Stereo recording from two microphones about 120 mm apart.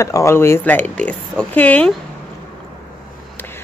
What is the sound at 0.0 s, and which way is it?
A woman's voice, 25° left (ahead or behind).